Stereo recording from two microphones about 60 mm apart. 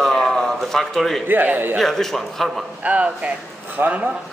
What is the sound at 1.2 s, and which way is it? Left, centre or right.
Speech, right.